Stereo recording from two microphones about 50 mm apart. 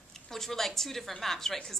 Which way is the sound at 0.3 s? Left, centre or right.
Centre.